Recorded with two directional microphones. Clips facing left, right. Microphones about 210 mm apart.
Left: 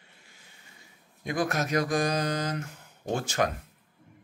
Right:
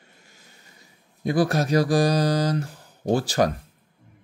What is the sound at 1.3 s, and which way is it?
Speech, 35° right (ahead or behind).